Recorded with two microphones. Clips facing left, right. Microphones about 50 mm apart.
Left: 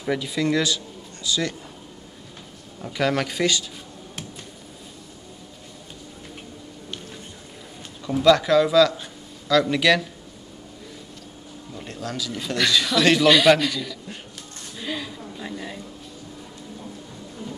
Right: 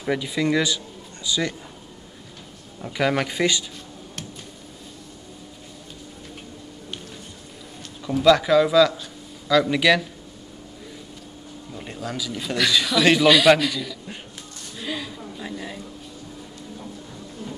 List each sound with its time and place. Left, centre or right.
0.0 s speech: centre
2.8 s speech: centre
8.2 s speech: centre
11.7 s a man's voice: centre
14.8 s a sound: centre